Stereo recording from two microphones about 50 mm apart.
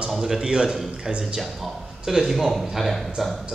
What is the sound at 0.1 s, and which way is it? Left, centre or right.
Speech, centre.